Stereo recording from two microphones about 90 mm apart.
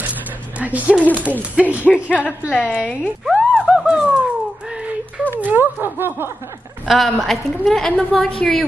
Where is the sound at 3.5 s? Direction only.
5° right (ahead or behind).